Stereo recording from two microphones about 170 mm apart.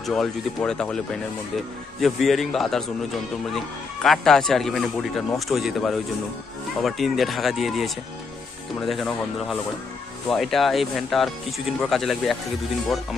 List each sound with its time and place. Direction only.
0.0 s speech: centre (ahead or behind)
2.0 s speech: centre (ahead or behind)